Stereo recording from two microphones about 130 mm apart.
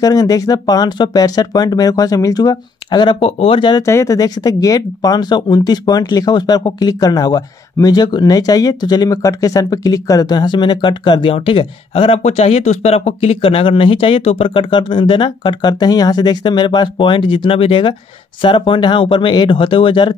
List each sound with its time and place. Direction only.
0.0 s speech: 30° left (ahead or behind)
3.8 s speech: 25° left (ahead or behind); by 20.2 s 40° left (ahead or behind)